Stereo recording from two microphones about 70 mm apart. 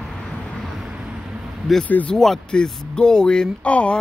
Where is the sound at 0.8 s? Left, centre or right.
Centre.